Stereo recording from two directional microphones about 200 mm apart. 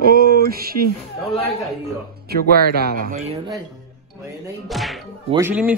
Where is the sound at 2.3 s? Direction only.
50° right (ahead or behind).